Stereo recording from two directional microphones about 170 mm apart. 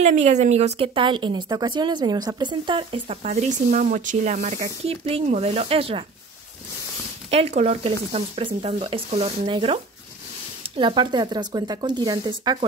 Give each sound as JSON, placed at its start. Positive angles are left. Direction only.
{"t": 0.0, "sound": "speech", "side_deg": -45}
{"t": 3.3, "sound": "speech", "side_deg": -50}
{"t": 7.2, "sound": "speech", "side_deg": -35}